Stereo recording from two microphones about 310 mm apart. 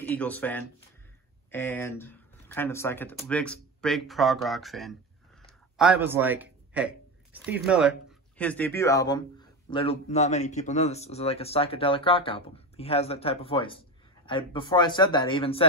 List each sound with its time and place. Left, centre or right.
0.0 s speech: centre